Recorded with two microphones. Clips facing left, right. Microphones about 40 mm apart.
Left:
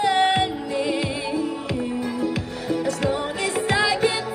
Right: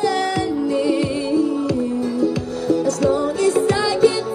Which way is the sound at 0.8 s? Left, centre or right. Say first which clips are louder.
Right 2 dB; left.